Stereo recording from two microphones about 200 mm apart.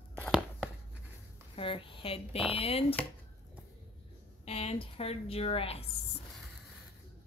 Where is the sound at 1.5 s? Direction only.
25° left (ahead or behind).